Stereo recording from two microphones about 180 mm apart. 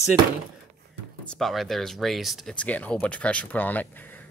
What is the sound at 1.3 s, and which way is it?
Speech, centre (ahead or behind).